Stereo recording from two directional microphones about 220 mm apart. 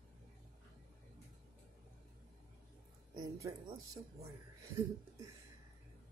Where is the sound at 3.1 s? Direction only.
15° right (ahead or behind).